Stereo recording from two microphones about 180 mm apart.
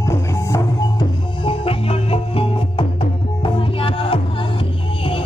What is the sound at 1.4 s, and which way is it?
Music, 30° left (ahead or behind).